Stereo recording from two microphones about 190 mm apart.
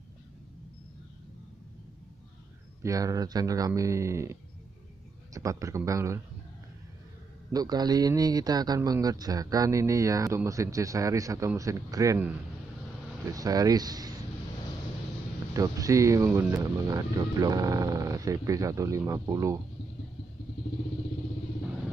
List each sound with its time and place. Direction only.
2.8 s a man's voice: 15° right (ahead or behind)
7.5 s a man's voice: 20° right (ahead or behind)
15.5 s a man's voice: 20° right (ahead or behind)